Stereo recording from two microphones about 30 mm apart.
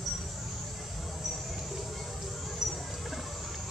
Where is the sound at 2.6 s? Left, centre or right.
Centre.